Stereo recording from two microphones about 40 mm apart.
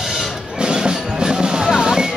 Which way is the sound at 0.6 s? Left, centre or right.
Right.